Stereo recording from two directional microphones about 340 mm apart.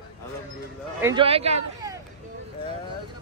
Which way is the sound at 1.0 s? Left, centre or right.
Centre.